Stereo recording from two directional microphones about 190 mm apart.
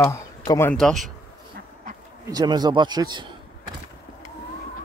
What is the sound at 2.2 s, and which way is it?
A man's voice, 20° right (ahead or behind).